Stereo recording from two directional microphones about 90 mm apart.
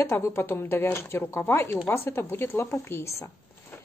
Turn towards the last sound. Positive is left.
turn(degrees=30)  # may be behind; listen again after turning